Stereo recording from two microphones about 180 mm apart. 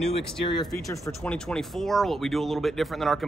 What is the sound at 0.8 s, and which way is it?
Speech, 15° left (ahead or behind).